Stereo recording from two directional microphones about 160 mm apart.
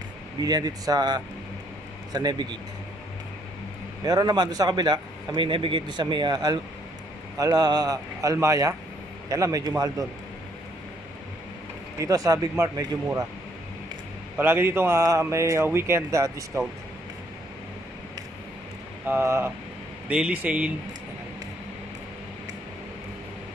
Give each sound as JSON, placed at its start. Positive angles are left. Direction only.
{"t": 0.4, "sound": "a man's voice", "side_deg": -25}
{"t": 4.0, "sound": "a man's voice", "side_deg": -25}
{"t": 12.0, "sound": "a man's voice", "side_deg": -20}
{"t": 14.3, "sound": "speech", "side_deg": -15}
{"t": 19.0, "sound": "speech", "side_deg": -15}